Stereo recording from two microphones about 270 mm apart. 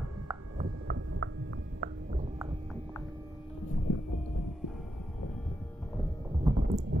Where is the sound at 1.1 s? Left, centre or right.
Right.